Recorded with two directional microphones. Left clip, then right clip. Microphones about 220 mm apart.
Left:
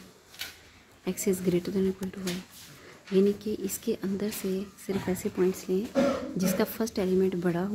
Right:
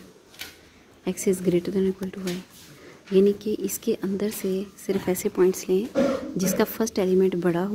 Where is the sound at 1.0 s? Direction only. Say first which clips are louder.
Right 5 dB; 10° right (ahead or behind).